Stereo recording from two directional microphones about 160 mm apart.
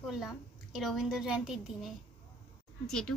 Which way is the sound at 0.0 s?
Centre (ahead or behind).